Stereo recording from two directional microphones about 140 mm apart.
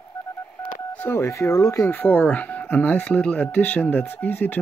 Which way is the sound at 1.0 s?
20° left (ahead or behind).